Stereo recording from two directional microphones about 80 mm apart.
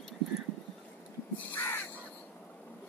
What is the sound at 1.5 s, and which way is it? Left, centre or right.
Crow, left.